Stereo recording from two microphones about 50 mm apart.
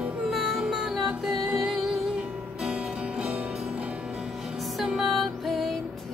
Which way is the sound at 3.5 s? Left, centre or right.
Centre.